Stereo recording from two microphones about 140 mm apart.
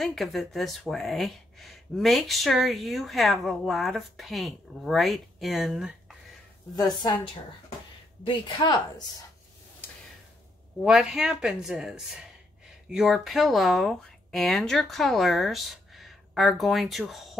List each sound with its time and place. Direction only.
0.0 s speech: centre (ahead or behind)
8.3 s speech: 35° left (ahead or behind)
10.8 s speech: 5° right (ahead or behind)